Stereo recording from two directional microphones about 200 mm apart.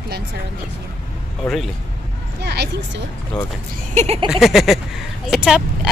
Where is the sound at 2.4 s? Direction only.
55° right (ahead or behind).